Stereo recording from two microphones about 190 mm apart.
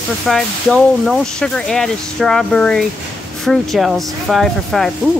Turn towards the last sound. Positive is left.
turn(degrees=0)  # may be behind; listen again after turning